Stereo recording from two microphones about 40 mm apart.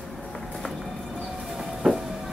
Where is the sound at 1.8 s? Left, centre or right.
Centre.